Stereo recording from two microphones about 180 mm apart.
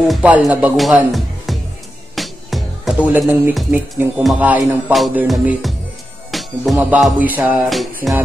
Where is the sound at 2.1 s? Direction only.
Centre (ahead or behind).